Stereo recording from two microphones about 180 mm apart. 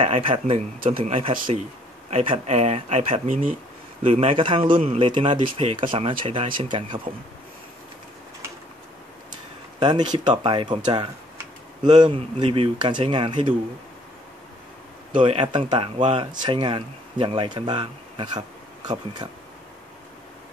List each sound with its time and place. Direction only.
0.0 s speech: 30° right (ahead or behind)
9.8 s speech: 25° right (ahead or behind)
15.1 s speech: 30° right (ahead or behind)